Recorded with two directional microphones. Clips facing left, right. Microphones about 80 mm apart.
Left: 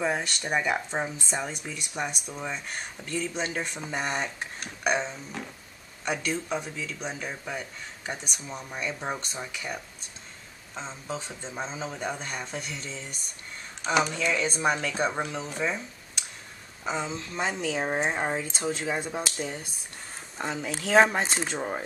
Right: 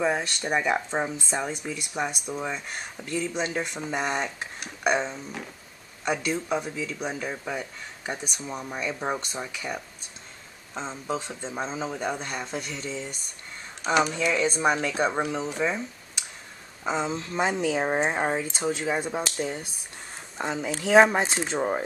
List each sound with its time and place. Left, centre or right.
0.0 s speech: centre
11.8 s speech: centre
16.8 s speech: centre